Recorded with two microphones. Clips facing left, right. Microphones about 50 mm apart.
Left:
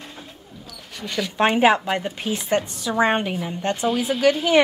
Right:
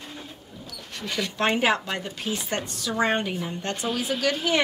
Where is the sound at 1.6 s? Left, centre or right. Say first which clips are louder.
Left 6 dB; left.